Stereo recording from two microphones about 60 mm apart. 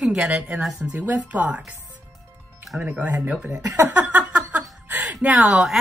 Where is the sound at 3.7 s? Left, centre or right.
Right.